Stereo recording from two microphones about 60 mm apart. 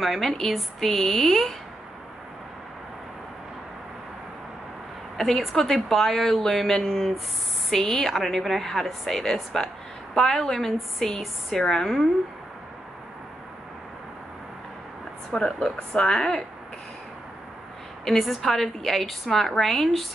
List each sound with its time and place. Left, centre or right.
0.0 s a woman's voice: centre
5.4 s a woman's voice: centre
15.3 s speech: centre
18.0 s a woman's voice: centre